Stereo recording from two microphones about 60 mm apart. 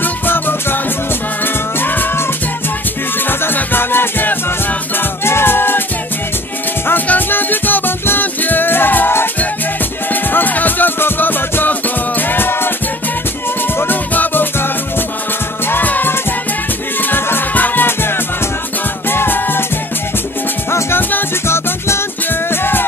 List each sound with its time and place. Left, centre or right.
0.0 s music: left
3.3 s music: left
6.9 s music: left
13.7 s music: left
21.5 s music: left
22.5 s music: left